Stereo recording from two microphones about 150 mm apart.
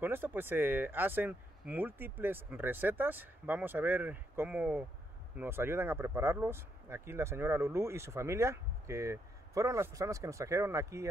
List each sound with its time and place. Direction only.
0.0 s speech: 15° right (ahead or behind)